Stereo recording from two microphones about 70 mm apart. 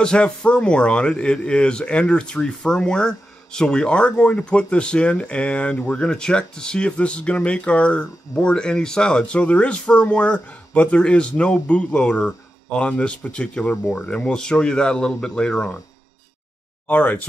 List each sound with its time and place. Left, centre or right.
0.0 s speech: centre
16.8 s speech: left